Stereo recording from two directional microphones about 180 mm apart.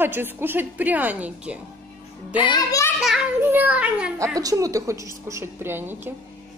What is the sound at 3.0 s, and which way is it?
A child's voice, 5° right (ahead or behind).